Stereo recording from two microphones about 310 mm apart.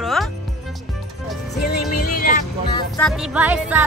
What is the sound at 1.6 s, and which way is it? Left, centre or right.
Music, left.